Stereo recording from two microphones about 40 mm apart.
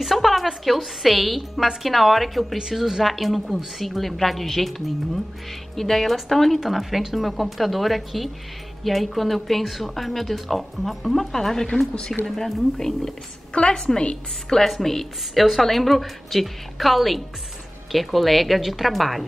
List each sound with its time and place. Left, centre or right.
0.0 s a woman's voice: centre
6.6 s speech: centre
11.3 s a woman's voice: centre
13.5 s a woman's voice: left
14.6 s a woman's voice: centre